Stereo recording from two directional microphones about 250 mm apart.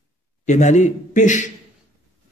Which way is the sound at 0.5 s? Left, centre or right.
Left.